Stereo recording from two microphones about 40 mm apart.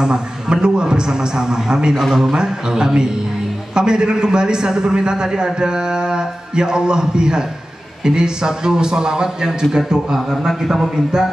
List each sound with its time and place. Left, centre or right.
0.0 s a man's voice: centre
2.0 s speech: centre
2.3 s a man's voice: centre
10.3 s speech: centre